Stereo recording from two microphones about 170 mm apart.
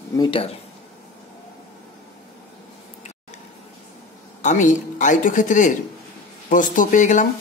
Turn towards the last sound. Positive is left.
turn(degrees=50)  # may be behind; listen again after turning